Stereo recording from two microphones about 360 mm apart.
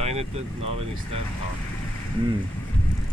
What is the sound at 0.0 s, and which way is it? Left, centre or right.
Boat, centre.